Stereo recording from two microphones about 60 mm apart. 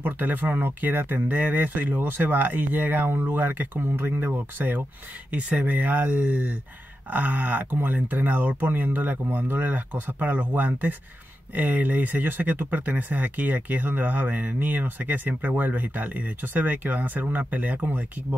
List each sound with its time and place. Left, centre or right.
0.0 s speech: right